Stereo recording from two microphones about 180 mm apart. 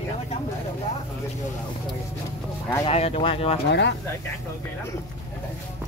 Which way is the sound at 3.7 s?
70° left (ahead or behind).